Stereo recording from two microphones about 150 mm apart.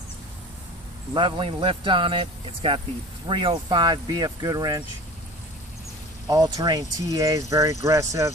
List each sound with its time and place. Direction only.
1.1 s speech: 35° right (ahead or behind)
6.2 s speech: 25° right (ahead or behind)